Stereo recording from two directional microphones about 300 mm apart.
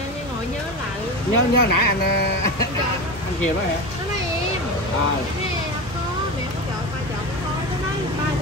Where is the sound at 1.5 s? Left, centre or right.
Left.